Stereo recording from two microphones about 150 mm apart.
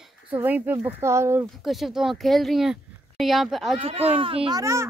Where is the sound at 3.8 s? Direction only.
45° right (ahead or behind).